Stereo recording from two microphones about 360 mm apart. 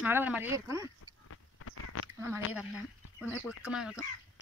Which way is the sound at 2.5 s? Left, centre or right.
Centre.